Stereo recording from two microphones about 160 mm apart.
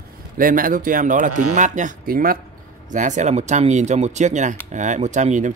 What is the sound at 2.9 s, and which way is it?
Speech, 50° right (ahead or behind).